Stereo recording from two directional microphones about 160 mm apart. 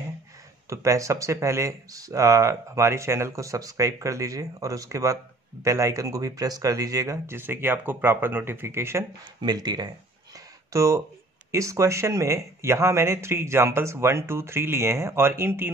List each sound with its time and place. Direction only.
0.7 s speech: 20° right (ahead or behind)
9.4 s speech: 25° right (ahead or behind)
10.3 s a sound: 20° right (ahead or behind)
11.5 s speech: 20° right (ahead or behind)